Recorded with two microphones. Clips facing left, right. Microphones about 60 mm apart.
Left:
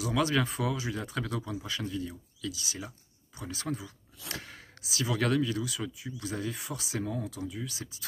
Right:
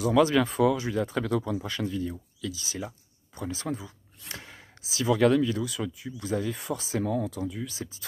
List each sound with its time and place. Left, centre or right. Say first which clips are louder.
0.0 s speech: right 6 dB; right
7.1 s speech: right 6 dB; right
7.6 s speech: right 4 dB; right